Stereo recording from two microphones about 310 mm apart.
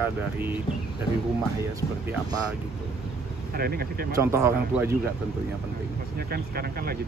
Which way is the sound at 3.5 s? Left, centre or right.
Right.